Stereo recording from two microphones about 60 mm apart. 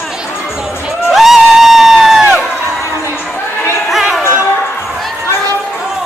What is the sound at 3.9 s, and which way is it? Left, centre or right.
Music, centre.